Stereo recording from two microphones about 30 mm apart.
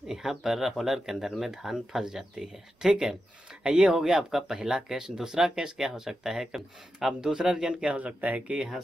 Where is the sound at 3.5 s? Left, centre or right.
Right.